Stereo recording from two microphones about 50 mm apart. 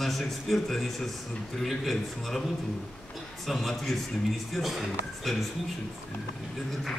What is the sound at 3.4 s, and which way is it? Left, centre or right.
A man's voice, centre.